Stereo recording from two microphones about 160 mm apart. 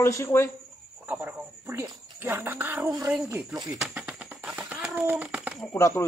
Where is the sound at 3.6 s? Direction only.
5° right (ahead or behind).